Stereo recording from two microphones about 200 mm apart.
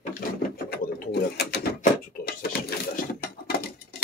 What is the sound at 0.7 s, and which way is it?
Mechanisms, 55° left (ahead or behind).